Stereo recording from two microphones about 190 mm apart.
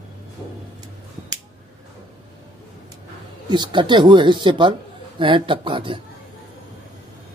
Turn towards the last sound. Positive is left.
turn(degrees=-25)  # may be behind; listen again after turning